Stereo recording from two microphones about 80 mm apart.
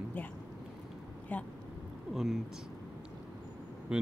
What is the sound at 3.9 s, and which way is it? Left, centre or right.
Speech, centre.